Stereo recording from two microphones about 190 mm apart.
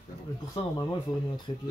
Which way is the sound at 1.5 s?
30° left (ahead or behind).